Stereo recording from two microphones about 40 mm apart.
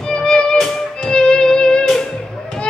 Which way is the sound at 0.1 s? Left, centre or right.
Centre.